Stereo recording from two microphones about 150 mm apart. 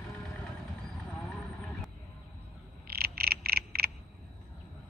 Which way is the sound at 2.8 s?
90° right.